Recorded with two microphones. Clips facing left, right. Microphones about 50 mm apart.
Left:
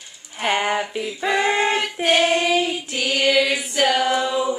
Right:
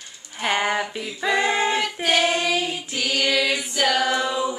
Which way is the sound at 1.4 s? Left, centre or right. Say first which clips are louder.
Left 2 dB; left.